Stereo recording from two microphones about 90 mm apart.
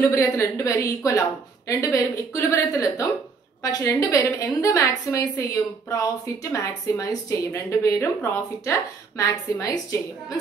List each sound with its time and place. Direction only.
0.1 s a woman's voice: 35° left (ahead or behind)